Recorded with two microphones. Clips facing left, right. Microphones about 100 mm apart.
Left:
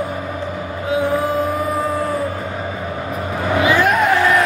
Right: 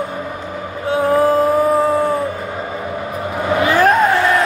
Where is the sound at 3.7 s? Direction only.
35° right (ahead or behind).